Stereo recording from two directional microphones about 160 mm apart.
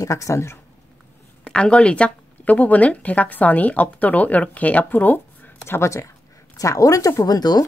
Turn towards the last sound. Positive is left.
turn(degrees=25)  # may be behind; listen again after turning